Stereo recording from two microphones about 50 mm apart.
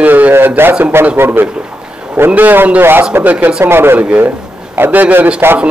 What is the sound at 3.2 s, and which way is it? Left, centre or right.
Speech, right.